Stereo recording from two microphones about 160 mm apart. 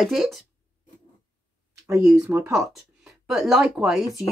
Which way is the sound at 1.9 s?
5° right (ahead or behind).